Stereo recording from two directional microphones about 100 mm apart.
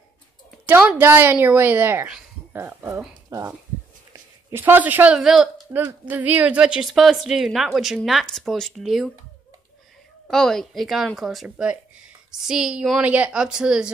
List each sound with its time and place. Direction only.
0.7 s a woman's voice: 15° right (ahead or behind)
4.5 s a woman's voice: 25° right (ahead or behind); by 5.7 s 5° right (ahead or behind)
5.7 s speech: 20° right (ahead or behind); by 9.1 s centre (ahead or behind)
10.2 s a woman's voice: 5° left (ahead or behind)